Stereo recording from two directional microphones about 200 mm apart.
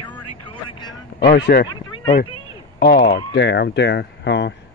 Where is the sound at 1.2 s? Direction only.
50° left (ahead or behind).